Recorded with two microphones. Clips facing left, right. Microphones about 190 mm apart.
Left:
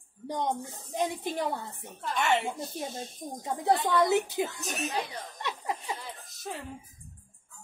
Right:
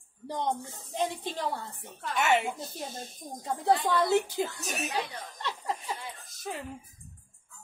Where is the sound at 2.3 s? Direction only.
Centre (ahead or behind).